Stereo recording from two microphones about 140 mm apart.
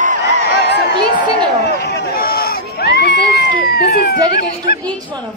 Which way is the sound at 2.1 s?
90° left.